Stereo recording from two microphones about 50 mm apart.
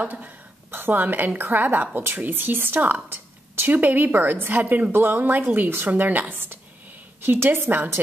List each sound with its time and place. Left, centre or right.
0.0 s a woman's voice: right
3.1 s a sound: right
3.7 s a woman's voice: right